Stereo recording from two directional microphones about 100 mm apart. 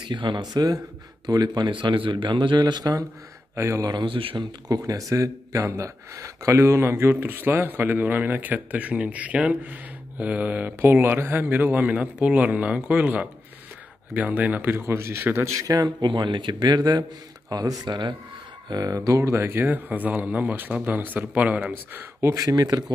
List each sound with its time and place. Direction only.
0.0 s speech: 55° right (ahead or behind); by 3.9 s 30° right (ahead or behind)
3.9 s speech: 55° right (ahead or behind)
4.6 s speech: 35° right (ahead or behind)
15.6 s speech: 40° right (ahead or behind)
16.1 s speech: 50° right (ahead or behind)
18.7 s a man's voice: 40° right (ahead or behind); by 22.0 s 15° right (ahead or behind)
22.2 s speech: 35° right (ahead or behind)